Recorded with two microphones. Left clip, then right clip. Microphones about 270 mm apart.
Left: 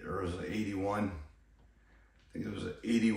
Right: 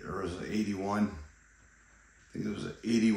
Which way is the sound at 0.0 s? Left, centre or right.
Right.